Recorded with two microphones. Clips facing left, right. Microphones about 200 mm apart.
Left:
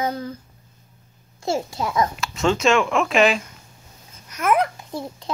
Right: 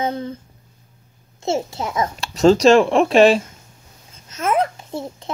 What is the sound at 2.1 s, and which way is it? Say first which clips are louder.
A child's voice: right 8 dB; 40° right (ahead or behind).